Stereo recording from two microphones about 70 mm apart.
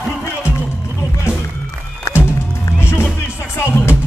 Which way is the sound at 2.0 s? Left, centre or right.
Left.